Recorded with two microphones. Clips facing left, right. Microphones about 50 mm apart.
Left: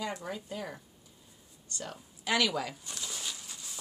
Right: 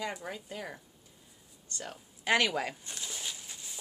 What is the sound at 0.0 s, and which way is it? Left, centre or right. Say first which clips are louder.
Speech: left 1 dB; centre.